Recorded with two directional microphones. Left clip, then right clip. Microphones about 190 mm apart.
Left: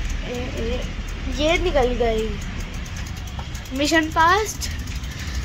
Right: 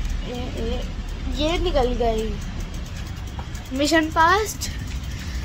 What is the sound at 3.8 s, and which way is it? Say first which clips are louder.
Speech: even; 15° right (ahead or behind).